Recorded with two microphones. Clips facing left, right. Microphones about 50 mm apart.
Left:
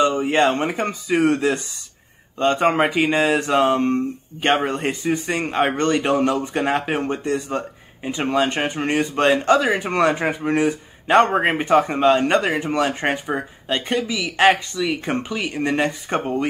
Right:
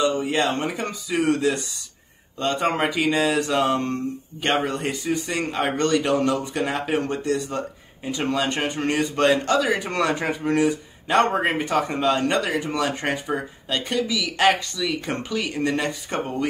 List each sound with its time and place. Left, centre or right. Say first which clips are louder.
0.0 s speech: left 4 dB; left